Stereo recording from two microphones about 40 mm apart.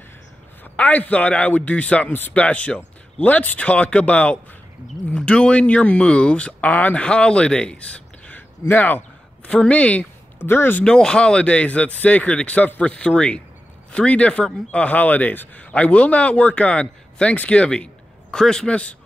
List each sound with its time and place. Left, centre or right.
0.7 s speech: left
6.6 s speech: left
7.0 s speech: left
8.7 s speech: left
9.5 s speech: left
10.4 s speech: left
10.9 s speech: left
13.0 s speech: left
15.0 s speech: left
18.3 s a man's voice: centre
18.7 s speech: left